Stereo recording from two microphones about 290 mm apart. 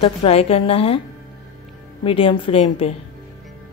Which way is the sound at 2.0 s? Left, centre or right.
Centre.